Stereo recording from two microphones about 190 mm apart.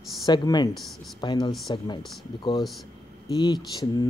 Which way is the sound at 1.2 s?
25° left (ahead or behind).